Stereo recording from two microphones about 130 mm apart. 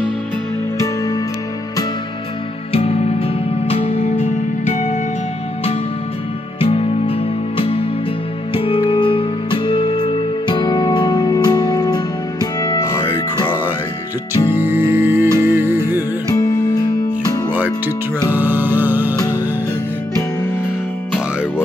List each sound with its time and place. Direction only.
0.7 s music: 25° left (ahead or behind)
2.7 s music: 50° left (ahead or behind)
6.6 s music: 45° left (ahead or behind); by 13.0 s 20° left (ahead or behind)
14.5 s music: 15° right (ahead or behind)
16.3 s music: 30° left (ahead or behind)
18.3 s music: 15° right (ahead or behind)
19.1 s music: 25° left (ahead or behind)